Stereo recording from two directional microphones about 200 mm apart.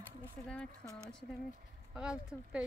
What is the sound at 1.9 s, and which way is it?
Speech, 5° right (ahead or behind).